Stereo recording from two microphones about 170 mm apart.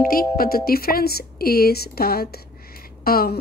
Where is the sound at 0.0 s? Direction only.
60° left (ahead or behind).